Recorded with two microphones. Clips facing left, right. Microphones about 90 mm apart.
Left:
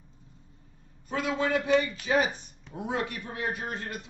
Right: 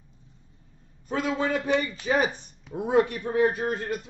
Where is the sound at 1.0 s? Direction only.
40° right (ahead or behind).